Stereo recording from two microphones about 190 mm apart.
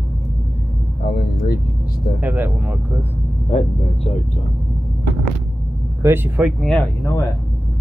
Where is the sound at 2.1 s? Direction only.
10° right (ahead or behind).